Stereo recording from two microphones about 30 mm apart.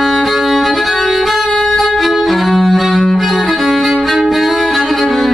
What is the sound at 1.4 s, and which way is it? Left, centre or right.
Saxophone, centre.